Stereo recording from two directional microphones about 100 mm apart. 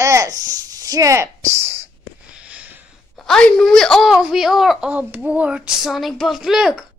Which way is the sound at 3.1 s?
5° left (ahead or behind).